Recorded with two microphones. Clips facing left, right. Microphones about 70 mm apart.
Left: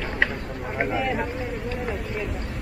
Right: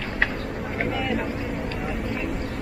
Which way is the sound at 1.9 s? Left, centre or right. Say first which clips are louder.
Right 2 dB; centre.